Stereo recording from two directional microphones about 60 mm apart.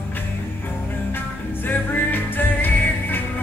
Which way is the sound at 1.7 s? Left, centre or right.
Left.